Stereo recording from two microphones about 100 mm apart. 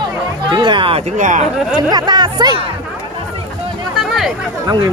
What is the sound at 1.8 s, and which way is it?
Speech, 45° right (ahead or behind).